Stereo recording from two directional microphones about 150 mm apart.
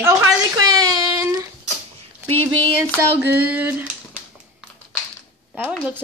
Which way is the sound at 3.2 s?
10° right (ahead or behind).